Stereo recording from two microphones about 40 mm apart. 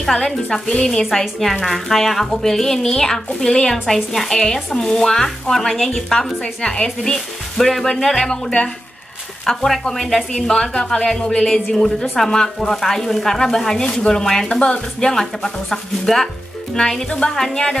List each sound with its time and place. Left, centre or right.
0.0 s speech: centre
1.2 s a woman's voice: centre
9.7 s speech: centre
17.3 s a woman's voice: centre